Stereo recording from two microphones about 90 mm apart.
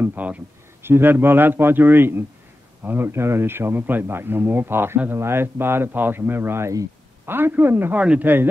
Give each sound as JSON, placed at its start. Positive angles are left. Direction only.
{"t": 0.0, "sound": "speech", "side_deg": -20}
{"t": 8.0, "sound": "speech", "side_deg": -10}